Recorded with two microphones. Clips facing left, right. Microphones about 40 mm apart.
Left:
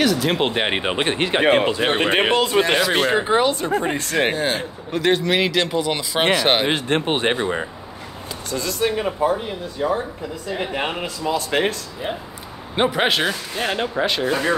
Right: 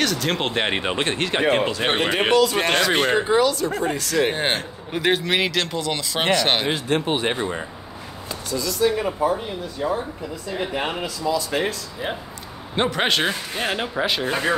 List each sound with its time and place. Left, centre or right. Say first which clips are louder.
0.0 s speech: left 4 dB; centre
1.4 s speech: left 3 dB; left
3.1 s speech: left 1 dB; centre
3.3 s speech: left 1 dB; left
4.9 s speech: left 2 dB; centre
6.7 s speech: left 2 dB; left
8.5 s speech: right 1 dB; left
10.5 s speech: left 1 dB; left
11.2 s speech: left 2 dB; left
12.7 s speech: left 2 dB; centre